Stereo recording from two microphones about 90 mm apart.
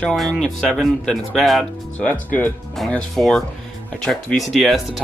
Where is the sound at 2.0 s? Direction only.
15° left (ahead or behind).